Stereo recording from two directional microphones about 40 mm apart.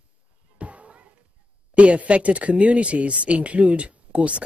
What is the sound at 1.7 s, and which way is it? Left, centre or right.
A woman's voice, right.